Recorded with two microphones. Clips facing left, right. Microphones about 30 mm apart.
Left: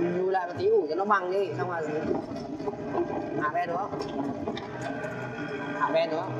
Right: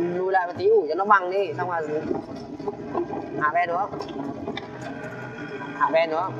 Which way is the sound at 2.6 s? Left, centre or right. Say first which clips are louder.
Right 2 dB; centre.